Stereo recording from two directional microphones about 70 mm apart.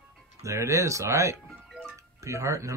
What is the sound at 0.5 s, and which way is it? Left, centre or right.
Speech, right.